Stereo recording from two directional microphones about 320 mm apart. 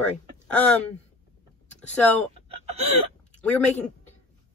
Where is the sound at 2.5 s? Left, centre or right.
Centre.